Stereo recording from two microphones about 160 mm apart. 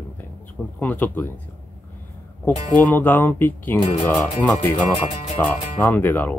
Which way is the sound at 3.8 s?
35° left (ahead or behind).